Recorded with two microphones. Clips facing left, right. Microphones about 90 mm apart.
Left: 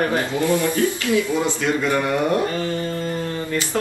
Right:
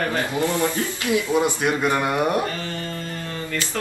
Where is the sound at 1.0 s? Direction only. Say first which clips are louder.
Even; 20° right (ahead or behind).